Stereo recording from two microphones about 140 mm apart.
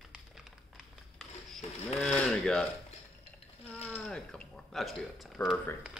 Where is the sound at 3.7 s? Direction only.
10° left (ahead or behind).